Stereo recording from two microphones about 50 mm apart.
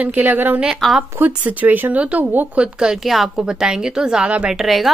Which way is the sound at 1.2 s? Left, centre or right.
Right.